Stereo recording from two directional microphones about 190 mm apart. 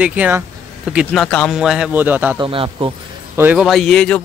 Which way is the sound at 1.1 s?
5° left (ahead or behind).